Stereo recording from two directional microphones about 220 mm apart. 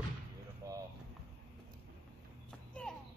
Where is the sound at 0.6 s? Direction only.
15° right (ahead or behind).